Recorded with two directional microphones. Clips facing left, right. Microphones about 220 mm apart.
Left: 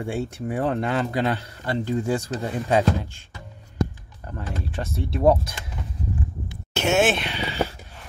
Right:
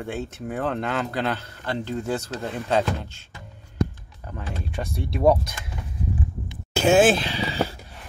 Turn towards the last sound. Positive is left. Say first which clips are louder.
# right 3 dB
turn(degrees=-30)  # may be behind; listen again after turning